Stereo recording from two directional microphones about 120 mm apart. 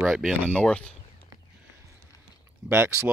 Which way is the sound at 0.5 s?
10° left (ahead or behind).